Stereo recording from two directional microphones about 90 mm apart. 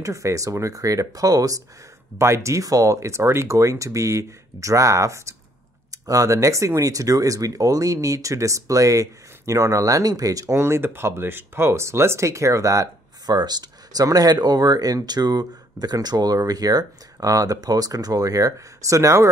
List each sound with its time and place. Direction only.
0.0 s speech: 35° right (ahead or behind)
2.1 s speech: 30° right (ahead or behind)